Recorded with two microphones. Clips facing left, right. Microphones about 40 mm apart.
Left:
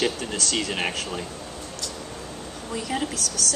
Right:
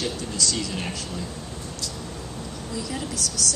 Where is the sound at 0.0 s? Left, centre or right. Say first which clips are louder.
Left 2 dB; left.